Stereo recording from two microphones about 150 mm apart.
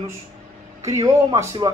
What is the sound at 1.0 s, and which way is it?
Speech, 25° right (ahead or behind).